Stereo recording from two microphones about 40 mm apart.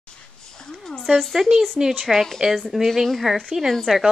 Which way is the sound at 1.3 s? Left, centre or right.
Centre.